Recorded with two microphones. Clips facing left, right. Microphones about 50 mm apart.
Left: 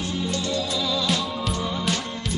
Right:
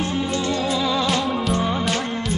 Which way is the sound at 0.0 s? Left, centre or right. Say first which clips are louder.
Right 4 dB; right.